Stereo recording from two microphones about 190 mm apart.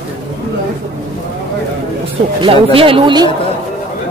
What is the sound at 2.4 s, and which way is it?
Speech, 30° right (ahead or behind).